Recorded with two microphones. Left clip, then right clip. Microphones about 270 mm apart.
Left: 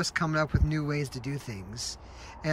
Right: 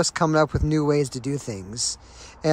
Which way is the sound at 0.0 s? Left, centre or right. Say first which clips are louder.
Right 8 dB; centre.